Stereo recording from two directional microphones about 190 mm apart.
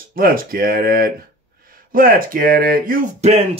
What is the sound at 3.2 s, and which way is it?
Speech, 35° right (ahead or behind).